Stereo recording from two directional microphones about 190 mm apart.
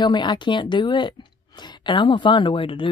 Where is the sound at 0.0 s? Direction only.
25° left (ahead or behind).